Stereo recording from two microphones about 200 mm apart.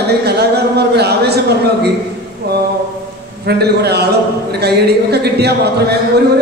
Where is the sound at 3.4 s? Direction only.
55° right (ahead or behind).